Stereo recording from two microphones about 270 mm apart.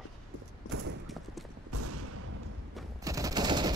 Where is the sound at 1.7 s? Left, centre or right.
Right.